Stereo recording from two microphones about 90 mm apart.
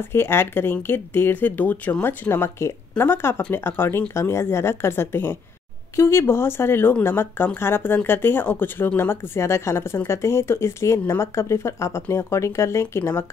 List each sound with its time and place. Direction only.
0.0 s speech: 25° left (ahead or behind)